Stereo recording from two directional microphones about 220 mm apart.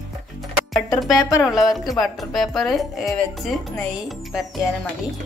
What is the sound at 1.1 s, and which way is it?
Speech, 15° left (ahead or behind).